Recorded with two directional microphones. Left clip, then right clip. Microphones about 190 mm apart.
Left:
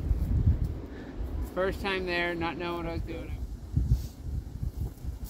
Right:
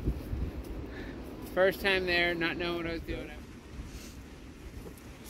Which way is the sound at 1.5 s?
55° left (ahead or behind).